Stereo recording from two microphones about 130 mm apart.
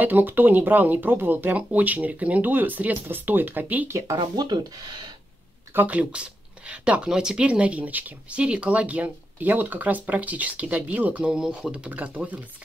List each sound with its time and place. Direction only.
0.0 s speech: 15° right (ahead or behind)
4.2 s speech: 35° right (ahead or behind)
5.8 s speech: 10° right (ahead or behind)